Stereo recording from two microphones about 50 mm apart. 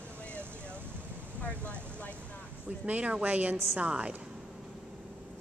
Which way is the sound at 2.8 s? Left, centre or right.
Right.